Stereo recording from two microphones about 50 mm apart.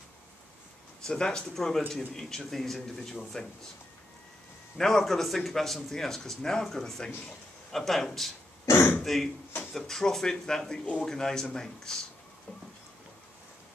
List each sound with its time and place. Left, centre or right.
1.0 s a man's voice: centre
4.7 s a man's voice: centre
8.7 s speech: left
9.0 s a man's voice: centre